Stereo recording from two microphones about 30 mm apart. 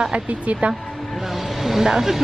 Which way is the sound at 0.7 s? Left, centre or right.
Centre.